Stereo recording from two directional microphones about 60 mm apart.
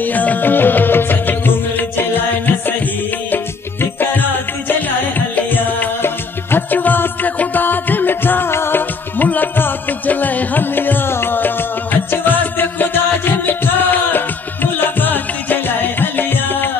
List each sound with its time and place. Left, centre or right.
0.0 s music: left
3.8 s music: left